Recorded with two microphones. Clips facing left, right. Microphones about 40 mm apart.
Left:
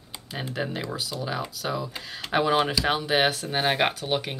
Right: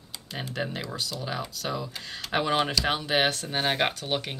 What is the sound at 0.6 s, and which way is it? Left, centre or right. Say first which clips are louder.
Speech: left 2 dB; centre.